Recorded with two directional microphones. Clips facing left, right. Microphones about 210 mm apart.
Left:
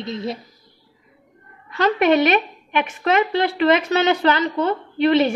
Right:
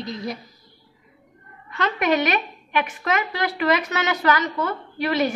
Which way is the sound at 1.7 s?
30° left (ahead or behind).